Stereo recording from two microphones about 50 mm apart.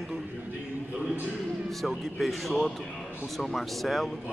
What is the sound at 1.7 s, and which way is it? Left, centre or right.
Speech, centre.